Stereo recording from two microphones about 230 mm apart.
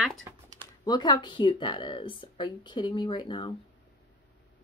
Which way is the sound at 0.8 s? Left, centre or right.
Centre.